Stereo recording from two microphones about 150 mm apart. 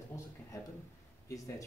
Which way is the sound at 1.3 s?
20° left (ahead or behind).